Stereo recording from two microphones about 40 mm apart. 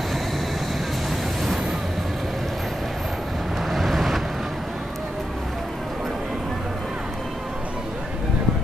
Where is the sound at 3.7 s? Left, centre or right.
Centre.